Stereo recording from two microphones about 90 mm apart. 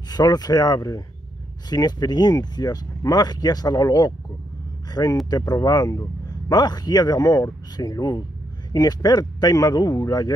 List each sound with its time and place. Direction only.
0.1 s a man's voice: 45° left (ahead or behind)